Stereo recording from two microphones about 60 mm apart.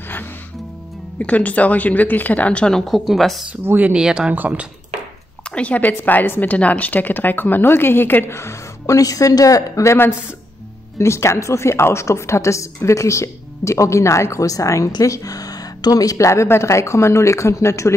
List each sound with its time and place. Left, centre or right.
1.1 s speech: left
2.9 s a woman's voice: centre
3.6 s speech: right
3.9 s speech: centre
4.3 s speech: right
5.5 s speech: left
6.4 s a woman's voice: left
8.3 s a woman's voice: left
11.0 s a woman's voice: left